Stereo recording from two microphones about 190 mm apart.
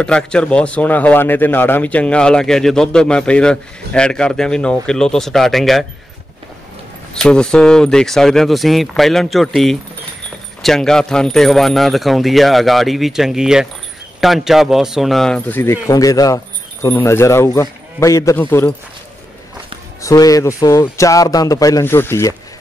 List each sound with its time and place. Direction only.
0.0 s a man's voice: 5° left (ahead or behind)
7.2 s a man's voice: 5° left (ahead or behind)
20.0 s speech: 15° left (ahead or behind)